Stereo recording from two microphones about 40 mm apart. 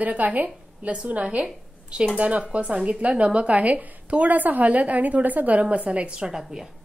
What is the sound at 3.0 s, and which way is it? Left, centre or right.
A woman's voice, right.